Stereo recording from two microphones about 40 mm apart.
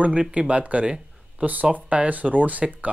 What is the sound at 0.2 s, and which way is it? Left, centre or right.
Speech, right.